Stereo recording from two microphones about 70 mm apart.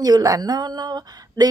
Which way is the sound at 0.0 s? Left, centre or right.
Right.